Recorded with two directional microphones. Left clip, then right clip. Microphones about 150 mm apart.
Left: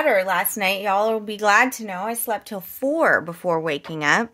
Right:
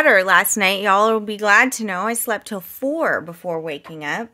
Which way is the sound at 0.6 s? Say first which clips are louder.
Right 4 dB; 40° right (ahead or behind).